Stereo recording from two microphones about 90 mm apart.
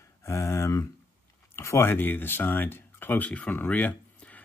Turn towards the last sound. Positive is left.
turn(degrees=15)  # may be behind; listen again after turning